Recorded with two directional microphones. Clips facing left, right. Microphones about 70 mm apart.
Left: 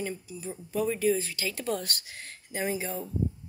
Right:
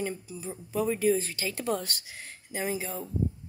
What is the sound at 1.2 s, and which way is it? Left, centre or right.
Speech, right.